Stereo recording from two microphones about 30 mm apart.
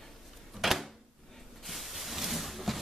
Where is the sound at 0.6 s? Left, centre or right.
Centre.